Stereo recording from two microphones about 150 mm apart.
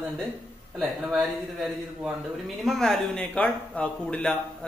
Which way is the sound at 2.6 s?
Centre (ahead or behind).